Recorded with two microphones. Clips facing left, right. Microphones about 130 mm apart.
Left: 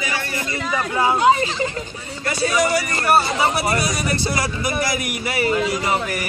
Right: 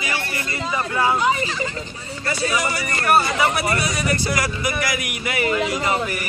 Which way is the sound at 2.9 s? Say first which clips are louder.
Left 1 dB; 30° left (ahead or behind).